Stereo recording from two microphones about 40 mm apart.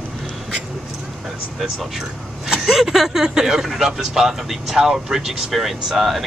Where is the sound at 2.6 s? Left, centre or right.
Centre.